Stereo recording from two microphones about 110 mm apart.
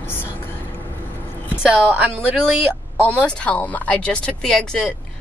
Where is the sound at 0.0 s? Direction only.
20° left (ahead or behind).